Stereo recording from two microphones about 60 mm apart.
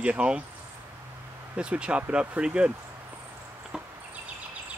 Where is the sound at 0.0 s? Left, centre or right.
Centre.